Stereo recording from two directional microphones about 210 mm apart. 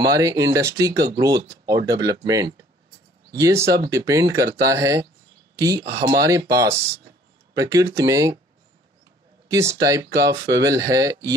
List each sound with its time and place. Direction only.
0.0 s speech: 15° right (ahead or behind)
9.5 s speech: 15° right (ahead or behind)